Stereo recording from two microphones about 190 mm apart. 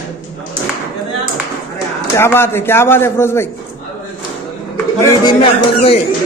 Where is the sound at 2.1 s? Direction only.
10° left (ahead or behind).